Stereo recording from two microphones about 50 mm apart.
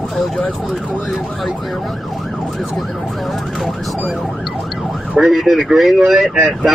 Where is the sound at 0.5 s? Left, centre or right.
Centre.